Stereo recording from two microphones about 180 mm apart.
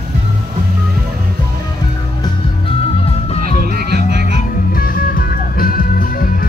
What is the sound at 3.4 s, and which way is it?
Music, 55° right (ahead or behind).